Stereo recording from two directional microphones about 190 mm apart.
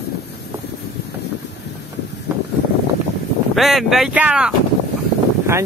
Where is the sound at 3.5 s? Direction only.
Centre (ahead or behind).